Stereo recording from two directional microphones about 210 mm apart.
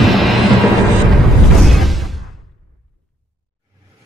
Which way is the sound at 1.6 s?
Centre (ahead or behind).